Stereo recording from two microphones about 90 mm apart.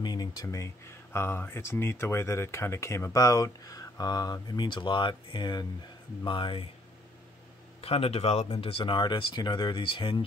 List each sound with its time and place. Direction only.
0.0 s a sound: 50° left (ahead or behind)
0.5 s speech: 30° left (ahead or behind); by 5.7 s 55° left (ahead or behind)
6.2 s speech: 70° left (ahead or behind)
7.8 s speech: 90° left; by 10.2 s 70° left (ahead or behind)